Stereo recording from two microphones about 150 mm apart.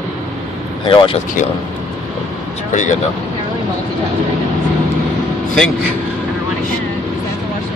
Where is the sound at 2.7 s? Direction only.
55° left (ahead or behind).